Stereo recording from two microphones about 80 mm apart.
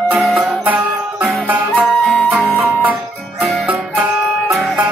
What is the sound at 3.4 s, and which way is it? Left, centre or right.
Music, centre.